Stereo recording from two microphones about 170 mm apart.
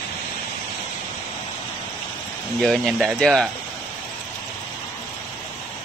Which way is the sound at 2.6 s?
Centre (ahead or behind).